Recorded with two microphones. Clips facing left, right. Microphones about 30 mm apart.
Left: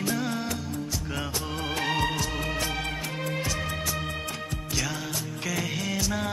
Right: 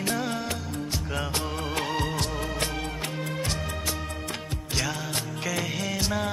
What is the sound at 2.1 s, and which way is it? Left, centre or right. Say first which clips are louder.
Music: even; right.